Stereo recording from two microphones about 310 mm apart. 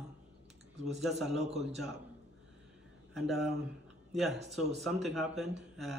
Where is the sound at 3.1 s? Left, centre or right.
Centre.